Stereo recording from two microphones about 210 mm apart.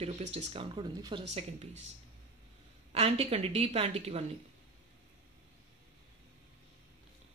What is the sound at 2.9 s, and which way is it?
A woman's voice, 30° right (ahead or behind).